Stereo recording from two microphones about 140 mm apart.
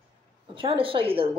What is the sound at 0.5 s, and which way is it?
Speech, 40° right (ahead or behind).